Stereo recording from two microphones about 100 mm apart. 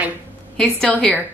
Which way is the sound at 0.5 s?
5° left (ahead or behind).